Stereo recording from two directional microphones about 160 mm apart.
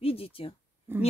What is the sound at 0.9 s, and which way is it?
Speech, 15° right (ahead or behind).